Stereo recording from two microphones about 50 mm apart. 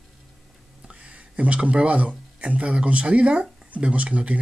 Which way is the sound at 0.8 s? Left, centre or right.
Right.